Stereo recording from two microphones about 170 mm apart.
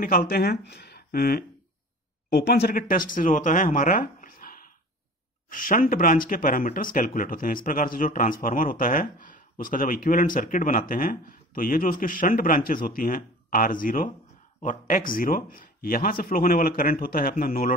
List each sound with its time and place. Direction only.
0.0 s speech: 60° left (ahead or behind)